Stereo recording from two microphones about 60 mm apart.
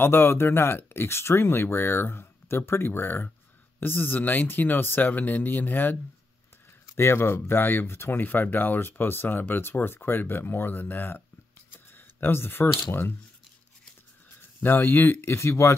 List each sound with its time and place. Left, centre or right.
0.0 s speech: left
7.0 s speech: left
14.4 s speech: left
15.3 s speech: left